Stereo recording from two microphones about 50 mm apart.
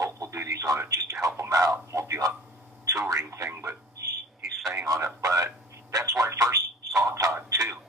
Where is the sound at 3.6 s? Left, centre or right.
Right.